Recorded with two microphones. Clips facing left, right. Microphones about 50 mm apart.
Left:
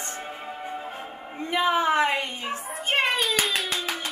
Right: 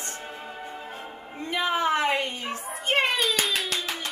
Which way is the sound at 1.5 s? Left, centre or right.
Left.